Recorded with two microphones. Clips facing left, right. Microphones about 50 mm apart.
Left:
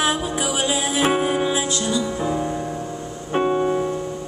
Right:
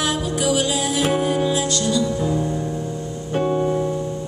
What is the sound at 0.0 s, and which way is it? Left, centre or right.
Music, centre.